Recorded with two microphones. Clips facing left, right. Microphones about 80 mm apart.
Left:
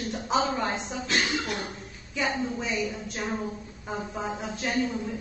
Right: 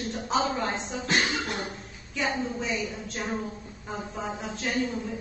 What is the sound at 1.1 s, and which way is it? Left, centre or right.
Speech, right.